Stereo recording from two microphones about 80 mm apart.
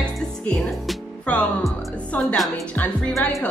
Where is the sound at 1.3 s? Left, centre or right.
Centre.